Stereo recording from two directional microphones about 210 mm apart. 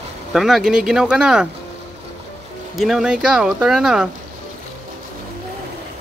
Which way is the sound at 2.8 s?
Centre (ahead or behind).